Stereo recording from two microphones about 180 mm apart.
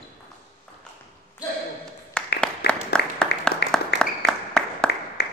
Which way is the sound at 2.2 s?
5° left (ahead or behind).